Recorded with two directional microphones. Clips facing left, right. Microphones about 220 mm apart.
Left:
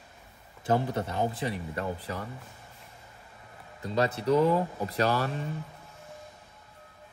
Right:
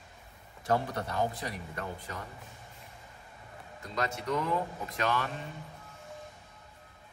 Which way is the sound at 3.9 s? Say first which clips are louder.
Left 8 dB; 30° left (ahead or behind).